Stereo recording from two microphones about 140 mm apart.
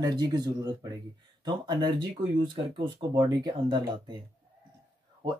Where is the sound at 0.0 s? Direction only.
30° right (ahead or behind).